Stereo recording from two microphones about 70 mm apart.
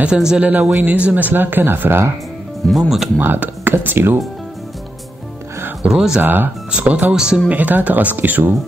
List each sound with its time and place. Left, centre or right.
0.0 s speech: centre
0.8 s speech: right
2.7 s speech: centre
3.2 s speech: right
5.9 s speech: centre
6.2 s speech: right; by 7.5 s centre
7.5 s speech: right